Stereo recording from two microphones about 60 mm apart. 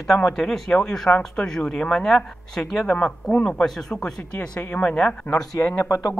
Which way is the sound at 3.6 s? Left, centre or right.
Centre.